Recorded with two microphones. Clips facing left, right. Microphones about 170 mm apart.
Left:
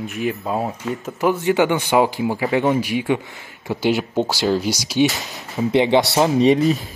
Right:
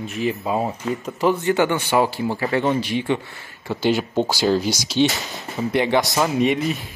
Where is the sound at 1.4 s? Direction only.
15° left (ahead or behind); by 5.6 s centre (ahead or behind).